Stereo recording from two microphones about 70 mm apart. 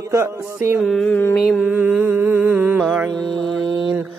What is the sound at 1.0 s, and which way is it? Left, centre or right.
Carnatic music, left.